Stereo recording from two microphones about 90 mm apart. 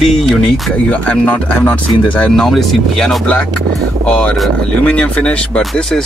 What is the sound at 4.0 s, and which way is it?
Speech, 15° left (ahead or behind).